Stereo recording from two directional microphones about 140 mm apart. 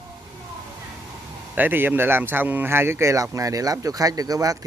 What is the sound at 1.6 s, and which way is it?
Speech, 15° right (ahead or behind).